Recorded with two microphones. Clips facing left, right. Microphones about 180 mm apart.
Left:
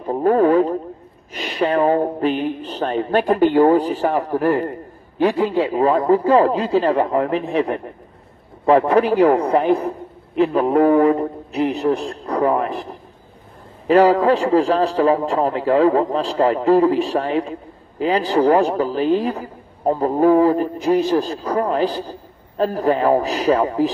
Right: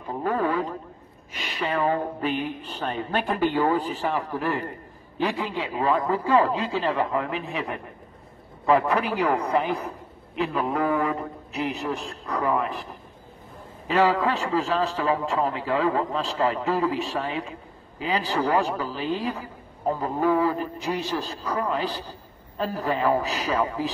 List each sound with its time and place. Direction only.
0.0 s a man's voice: 40° left (ahead or behind)
13.8 s a man's voice: 40° left (ahead or behind)